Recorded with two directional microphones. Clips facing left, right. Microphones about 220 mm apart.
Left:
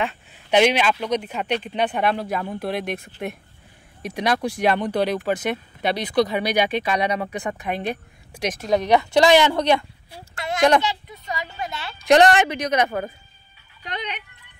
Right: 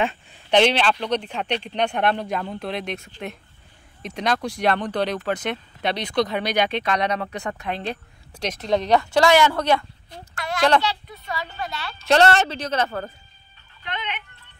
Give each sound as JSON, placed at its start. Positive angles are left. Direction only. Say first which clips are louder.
{"t": 0.3, "sound": "speech", "louder": "left 1 dB", "side_deg": 10}
{"t": 2.8, "sound": "speech", "louder": "left 2 dB", "side_deg": 55}
{"t": 3.1, "sound": "a woman's voice", "louder": "left 3 dB", "side_deg": 10}
{"t": 13.8, "sound": "speech", "louder": "left 1 dB", "side_deg": 40}